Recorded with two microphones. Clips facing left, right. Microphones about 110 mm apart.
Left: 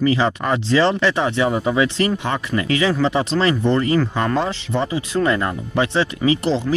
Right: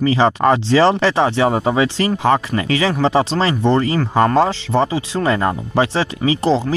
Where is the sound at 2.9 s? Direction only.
30° right (ahead or behind).